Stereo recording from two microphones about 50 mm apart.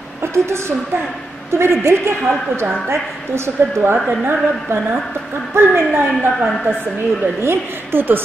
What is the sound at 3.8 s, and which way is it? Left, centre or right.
A woman's voice, right.